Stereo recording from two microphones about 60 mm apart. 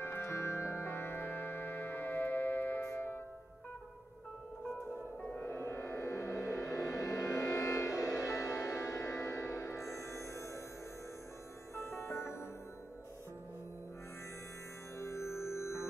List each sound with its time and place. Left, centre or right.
0.0 s music: left
5.4 s music: left
11.7 s music: left
15.0 s music: left